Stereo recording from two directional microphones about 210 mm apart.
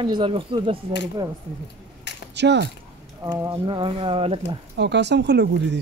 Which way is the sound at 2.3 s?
55° right (ahead or behind).